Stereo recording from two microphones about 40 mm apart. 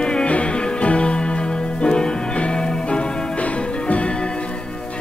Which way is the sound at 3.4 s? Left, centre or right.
Left.